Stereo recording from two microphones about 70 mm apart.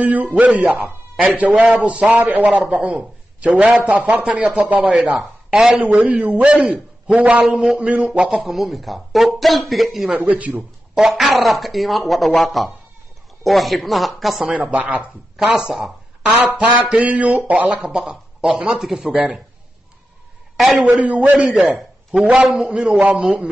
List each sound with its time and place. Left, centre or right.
0.0 s a man's voice: right
5.1 s speech: centre
5.9 s a man's voice: centre
8.3 s speech: centre
10.2 s speech: right
11.0 s speech: centre
14.5 s a man's voice: centre
16.9 s speech: right
17.9 s a man's voice: centre
20.5 s a woman's voice: centre
20.8 s a man's voice: right